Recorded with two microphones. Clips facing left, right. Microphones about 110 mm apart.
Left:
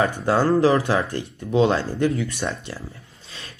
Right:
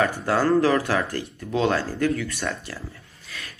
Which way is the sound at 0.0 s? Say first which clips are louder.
Left 2 dB; 25° left (ahead or behind).